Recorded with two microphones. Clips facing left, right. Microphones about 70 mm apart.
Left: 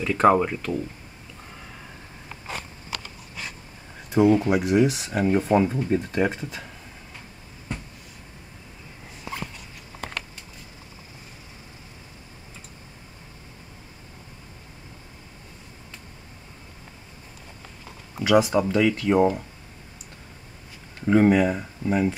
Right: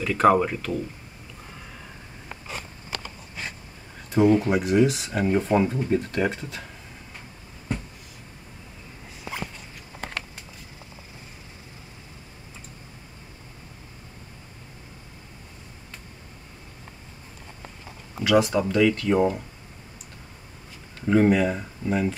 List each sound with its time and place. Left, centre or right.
0.0 s speech: centre
2.9 s a sound: right
4.1 s speech: centre
18.2 s speech: centre
21.0 s speech: centre